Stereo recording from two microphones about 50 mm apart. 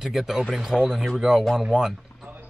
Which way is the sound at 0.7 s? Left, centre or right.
Centre.